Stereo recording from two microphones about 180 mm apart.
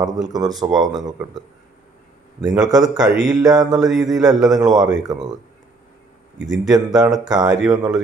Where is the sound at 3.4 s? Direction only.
20° right (ahead or behind).